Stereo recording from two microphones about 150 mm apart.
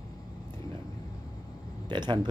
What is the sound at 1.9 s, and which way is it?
Speech, 30° right (ahead or behind).